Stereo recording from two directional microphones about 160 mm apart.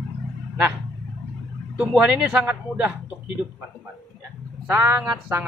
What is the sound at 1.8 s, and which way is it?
Speech, 10° right (ahead or behind).